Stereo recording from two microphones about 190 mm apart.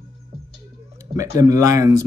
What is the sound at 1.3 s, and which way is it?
Speech, 15° right (ahead or behind).